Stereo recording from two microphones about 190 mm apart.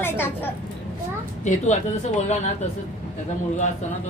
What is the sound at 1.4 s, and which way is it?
Speech, 40° left (ahead or behind).